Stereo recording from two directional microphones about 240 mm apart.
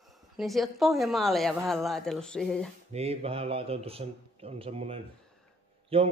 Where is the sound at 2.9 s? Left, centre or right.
Right.